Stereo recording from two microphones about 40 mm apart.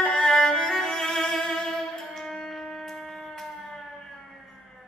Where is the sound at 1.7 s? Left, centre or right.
Centre.